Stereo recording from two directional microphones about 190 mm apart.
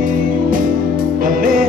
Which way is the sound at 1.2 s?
45° right (ahead or behind).